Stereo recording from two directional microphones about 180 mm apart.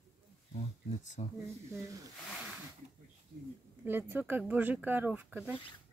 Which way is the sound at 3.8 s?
10° right (ahead or behind).